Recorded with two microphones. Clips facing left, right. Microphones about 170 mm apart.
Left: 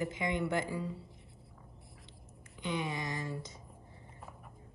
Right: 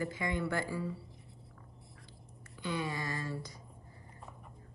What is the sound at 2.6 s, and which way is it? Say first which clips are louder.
Speech: even; 20° left (ahead or behind).